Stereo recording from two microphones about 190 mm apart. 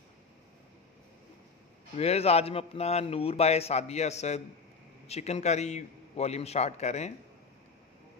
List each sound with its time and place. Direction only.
2.0 s a man's voice: 35° left (ahead or behind)